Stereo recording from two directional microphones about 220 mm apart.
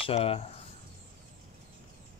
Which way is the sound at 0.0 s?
25° left (ahead or behind).